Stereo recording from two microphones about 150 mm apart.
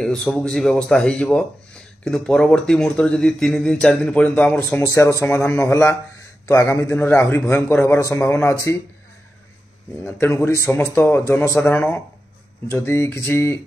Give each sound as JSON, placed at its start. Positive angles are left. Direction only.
{"t": 0.0, "sound": "speech", "side_deg": 5}
{"t": 10.0, "sound": "speech", "side_deg": 15}